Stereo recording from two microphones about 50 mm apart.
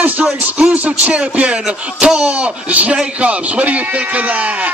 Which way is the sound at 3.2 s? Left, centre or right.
Right.